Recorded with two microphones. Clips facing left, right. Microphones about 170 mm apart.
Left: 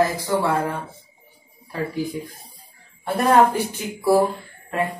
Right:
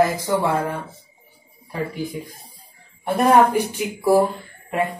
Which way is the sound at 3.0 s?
15° right (ahead or behind).